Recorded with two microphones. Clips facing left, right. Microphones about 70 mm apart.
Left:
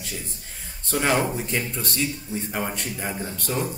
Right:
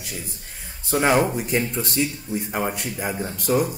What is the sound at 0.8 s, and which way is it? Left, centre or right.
Speech, centre.